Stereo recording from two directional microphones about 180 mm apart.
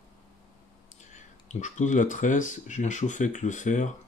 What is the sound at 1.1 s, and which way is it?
Speech, 40° left (ahead or behind).